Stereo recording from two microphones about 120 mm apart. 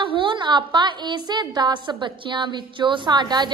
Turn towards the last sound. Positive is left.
turn(degrees=-35)  # may be behind; listen again after turning